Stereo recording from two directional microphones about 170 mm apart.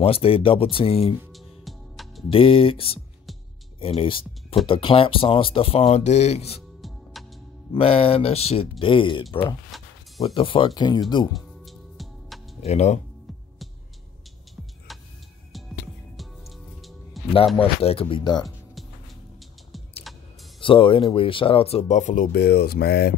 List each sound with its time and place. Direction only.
0.0 s speech: 35° left (ahead or behind)
1.3 s music: centre (ahead or behind)
2.3 s speech: 35° left (ahead or behind)
7.2 s music: centre (ahead or behind)
7.7 s speech: 35° left (ahead or behind)
11.3 s music: centre (ahead or behind)
12.6 s speech: 40° left (ahead or behind)
14.9 s tick-tock: centre (ahead or behind)
15.5 s music: centre (ahead or behind)
17.6 s speech: 35° left (ahead or behind)
20.6 s speech: 30° left (ahead or behind); by 23.1 s 70° left (ahead or behind)